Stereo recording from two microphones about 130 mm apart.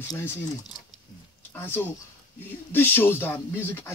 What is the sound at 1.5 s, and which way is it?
Speech, 15° left (ahead or behind).